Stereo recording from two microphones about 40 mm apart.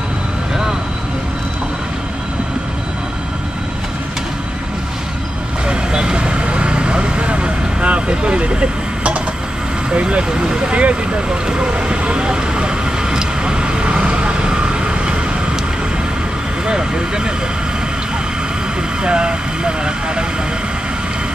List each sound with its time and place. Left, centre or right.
5.7 s vehicle: right
16.6 s vehicle: centre
19.0 s vehicle: right